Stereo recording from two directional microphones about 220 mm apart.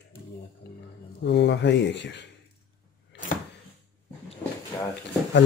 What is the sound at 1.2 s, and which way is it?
Speech, 50° left (ahead or behind).